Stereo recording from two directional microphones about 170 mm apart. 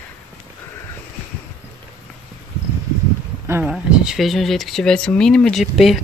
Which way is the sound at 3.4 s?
15° right (ahead or behind).